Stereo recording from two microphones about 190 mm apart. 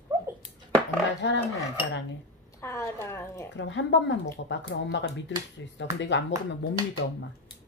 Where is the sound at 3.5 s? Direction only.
75° left (ahead or behind).